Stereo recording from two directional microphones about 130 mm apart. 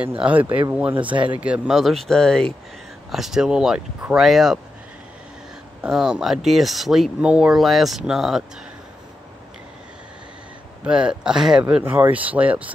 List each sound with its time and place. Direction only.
0.2 s speech: 10° right (ahead or behind)
0.9 s speech: 40° right (ahead or behind)
1.4 s speech: 5° right (ahead or behind)
5.8 s speech: 5° right (ahead or behind)
10.9 s speech: 5° right (ahead or behind)